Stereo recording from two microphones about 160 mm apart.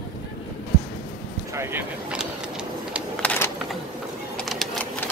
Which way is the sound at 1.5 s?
15° right (ahead or behind).